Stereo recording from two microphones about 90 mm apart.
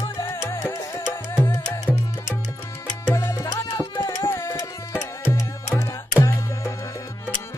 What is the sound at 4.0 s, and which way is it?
Tabla, 25° left (ahead or behind).